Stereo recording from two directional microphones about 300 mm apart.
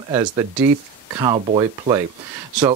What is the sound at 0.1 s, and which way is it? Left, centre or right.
Speech, centre.